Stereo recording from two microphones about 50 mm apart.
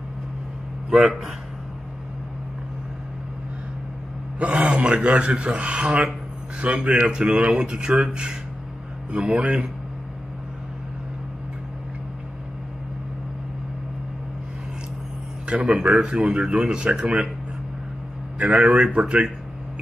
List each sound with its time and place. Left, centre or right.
0.8 s speech: centre
4.4 s speech: right
15.6 s speech: centre
18.4 s speech: right